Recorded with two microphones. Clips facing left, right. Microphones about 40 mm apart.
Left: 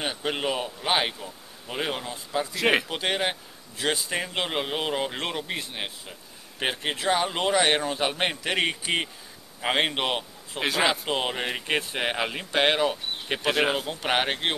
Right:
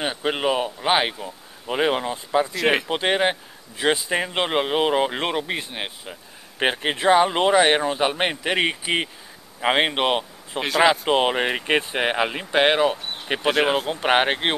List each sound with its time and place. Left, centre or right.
0.0 s a man's voice: centre
2.5 s speech: centre
2.9 s a man's voice: centre
10.6 s speech: centre
11.1 s a man's voice: right